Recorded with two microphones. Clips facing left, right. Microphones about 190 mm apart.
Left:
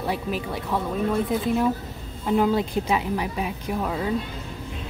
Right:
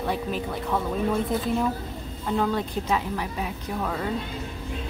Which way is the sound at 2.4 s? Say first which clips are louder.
Left 4 dB; 10° left (ahead or behind).